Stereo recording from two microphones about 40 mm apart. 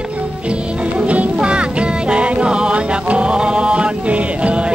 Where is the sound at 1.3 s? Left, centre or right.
Right.